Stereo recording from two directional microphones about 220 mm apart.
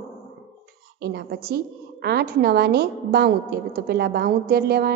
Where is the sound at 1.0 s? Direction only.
45° right (ahead or behind).